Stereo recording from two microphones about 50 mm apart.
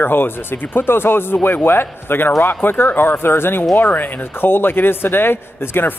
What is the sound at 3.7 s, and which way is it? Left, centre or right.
A man's voice, left.